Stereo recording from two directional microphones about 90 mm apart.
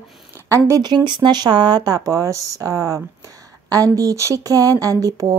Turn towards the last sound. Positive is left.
turn(degrees=-40)  # may be behind; listen again after turning